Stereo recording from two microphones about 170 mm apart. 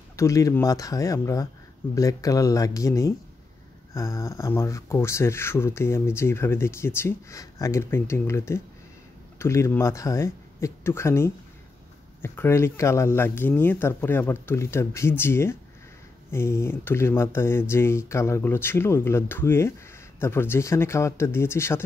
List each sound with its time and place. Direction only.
0.1 s speech: 20° left (ahead or behind)